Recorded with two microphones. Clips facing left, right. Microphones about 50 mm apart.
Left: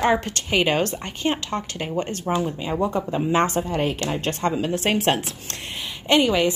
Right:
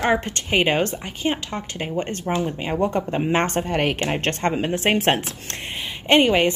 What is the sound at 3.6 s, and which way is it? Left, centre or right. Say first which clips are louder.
A woman's voice: right 2 dB; right.